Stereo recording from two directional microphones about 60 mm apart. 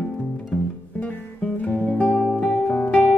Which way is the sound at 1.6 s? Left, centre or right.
Left.